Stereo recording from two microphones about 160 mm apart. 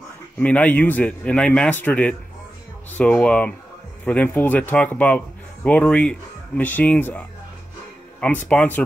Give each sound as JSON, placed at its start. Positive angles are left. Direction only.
{"t": 0.4, "sound": "a man's voice", "side_deg": 10}